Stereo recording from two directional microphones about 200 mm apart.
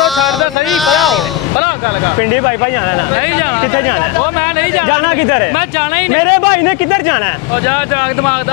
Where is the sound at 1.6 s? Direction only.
15° left (ahead or behind).